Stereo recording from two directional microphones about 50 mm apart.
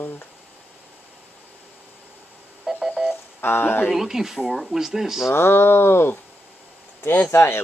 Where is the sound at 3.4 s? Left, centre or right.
Left.